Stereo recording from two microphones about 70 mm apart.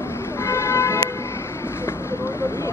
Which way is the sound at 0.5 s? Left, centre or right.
Left.